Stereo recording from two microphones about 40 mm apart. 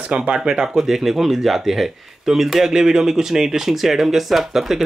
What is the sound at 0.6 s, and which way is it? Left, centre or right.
Speech, centre.